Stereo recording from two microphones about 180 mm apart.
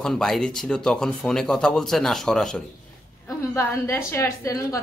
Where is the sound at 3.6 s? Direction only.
15° left (ahead or behind).